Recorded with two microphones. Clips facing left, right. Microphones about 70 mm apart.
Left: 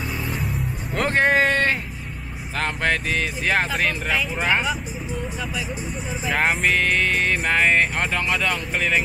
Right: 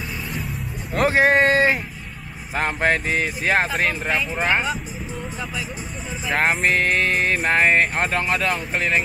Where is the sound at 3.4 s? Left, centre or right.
Centre.